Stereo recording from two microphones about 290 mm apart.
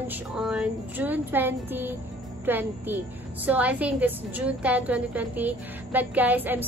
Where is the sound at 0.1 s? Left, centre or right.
Centre.